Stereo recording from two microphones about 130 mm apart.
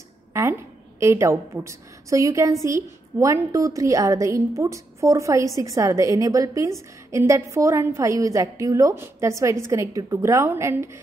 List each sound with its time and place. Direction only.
0.3 s a woman's voice: 20° right (ahead or behind)